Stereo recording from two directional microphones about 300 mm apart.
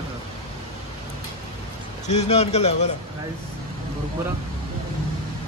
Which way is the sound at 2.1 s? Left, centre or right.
Left.